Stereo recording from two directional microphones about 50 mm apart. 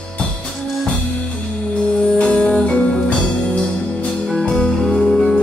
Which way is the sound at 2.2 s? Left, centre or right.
Left.